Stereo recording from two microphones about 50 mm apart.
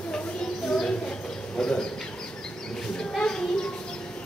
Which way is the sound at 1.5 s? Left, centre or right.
Centre.